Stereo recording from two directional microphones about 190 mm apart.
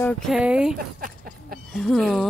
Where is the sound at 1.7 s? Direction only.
Centre (ahead or behind).